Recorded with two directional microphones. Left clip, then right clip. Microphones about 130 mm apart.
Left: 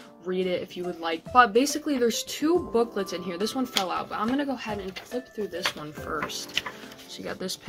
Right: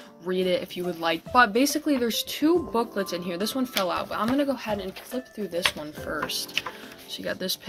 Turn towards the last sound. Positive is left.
turn(degrees=-25)  # may be behind; listen again after turning